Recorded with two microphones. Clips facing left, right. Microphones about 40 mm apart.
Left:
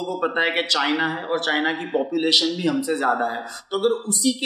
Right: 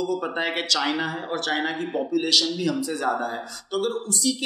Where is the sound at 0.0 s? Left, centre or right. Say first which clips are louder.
Left 3 dB; left.